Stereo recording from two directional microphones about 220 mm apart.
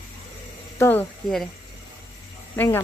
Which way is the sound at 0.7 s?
10° left (ahead or behind).